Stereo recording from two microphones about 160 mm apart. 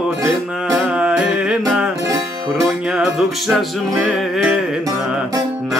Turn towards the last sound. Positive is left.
turn(degrees=0)  # may be behind; listen again after turning